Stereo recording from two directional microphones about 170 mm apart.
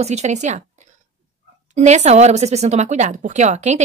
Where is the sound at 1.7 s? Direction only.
40° right (ahead or behind).